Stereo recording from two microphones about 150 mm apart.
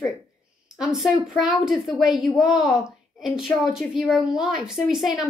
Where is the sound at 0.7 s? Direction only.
Centre (ahead or behind).